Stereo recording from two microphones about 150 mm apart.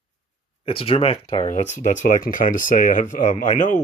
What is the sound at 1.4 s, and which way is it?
Speech, 55° left (ahead or behind).